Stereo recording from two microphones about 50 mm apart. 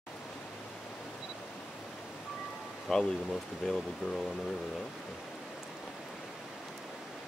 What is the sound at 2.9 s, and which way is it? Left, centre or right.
Speech, centre.